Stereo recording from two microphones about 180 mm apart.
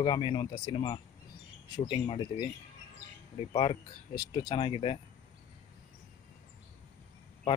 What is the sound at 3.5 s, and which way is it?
Speech, 25° left (ahead or behind).